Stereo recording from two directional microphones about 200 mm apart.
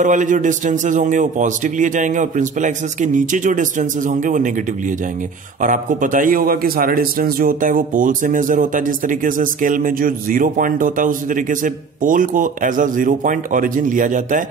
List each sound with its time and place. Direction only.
0.0 s a man's voice: 40° right (ahead or behind)
5.6 s a man's voice: 40° right (ahead or behind)